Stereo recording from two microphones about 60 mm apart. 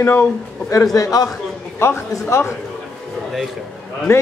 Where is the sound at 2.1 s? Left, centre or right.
Left.